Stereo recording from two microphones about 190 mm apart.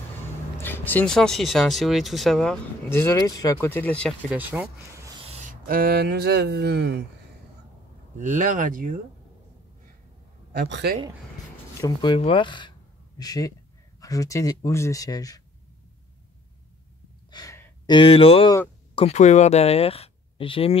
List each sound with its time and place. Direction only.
0.6 s speech: 10° left (ahead or behind)
4.3 s speech: 10° right (ahead or behind)
5.2 s speech: 35° right (ahead or behind); by 7.0 s 60° right (ahead or behind)
8.2 s speech: 40° right (ahead or behind)
10.5 s a man's voice: 60° right (ahead or behind)
11.8 s a man's voice: 25° left (ahead or behind)
17.3 s gasp: 20° left (ahead or behind)
18.9 s speech: 35° left (ahead or behind)